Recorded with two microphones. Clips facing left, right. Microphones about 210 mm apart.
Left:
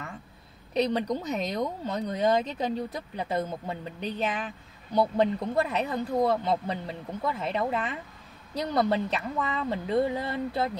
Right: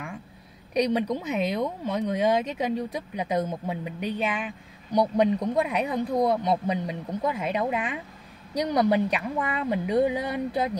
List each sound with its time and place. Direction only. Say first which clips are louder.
0.7 s speech: right 2 dB; 10° right (ahead or behind)